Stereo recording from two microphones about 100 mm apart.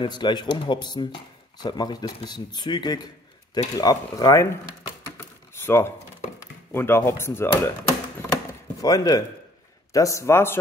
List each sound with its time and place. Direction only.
0.0 s speech: 45° left (ahead or behind)
5.1 s a sound: 25° left (ahead or behind)
6.7 s speech: 25° left (ahead or behind)
8.8 s speech: 40° left (ahead or behind)